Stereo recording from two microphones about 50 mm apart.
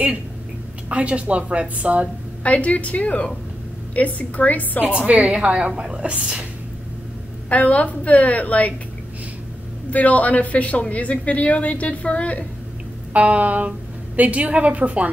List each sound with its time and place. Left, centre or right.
0.8 s a woman's voice: right
2.4 s a woman's voice: left
4.8 s a woman's voice: right
7.4 s a woman's voice: left
9.8 s a woman's voice: left
13.1 s a woman's voice: right